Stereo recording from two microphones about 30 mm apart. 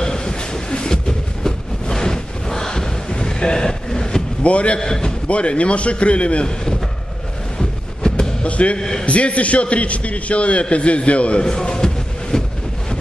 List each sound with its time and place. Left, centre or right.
0.0 s train: left
4.4 s a man's voice: left
4.7 s a man's voice: left
5.3 s a man's voice: left
7.5 s a sound: left
8.4 s speech: left
8.7 s a man's voice: left
9.0 s a man's voice: left
11.4 s a sound: left